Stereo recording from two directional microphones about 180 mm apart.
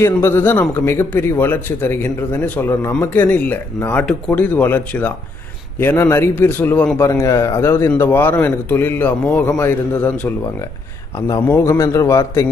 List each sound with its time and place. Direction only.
0.0 s a man's voice: 15° left (ahead or behind)
11.2 s a man's voice: 15° left (ahead or behind)